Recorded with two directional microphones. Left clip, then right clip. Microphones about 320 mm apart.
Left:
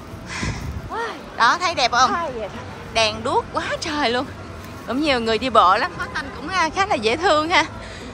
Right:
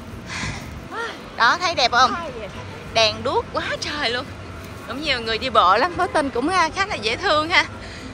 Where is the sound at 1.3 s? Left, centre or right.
Centre.